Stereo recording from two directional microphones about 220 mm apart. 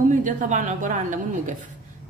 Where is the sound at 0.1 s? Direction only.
35° right (ahead or behind).